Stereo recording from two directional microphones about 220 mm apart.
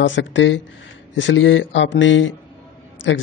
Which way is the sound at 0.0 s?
55° left (ahead or behind).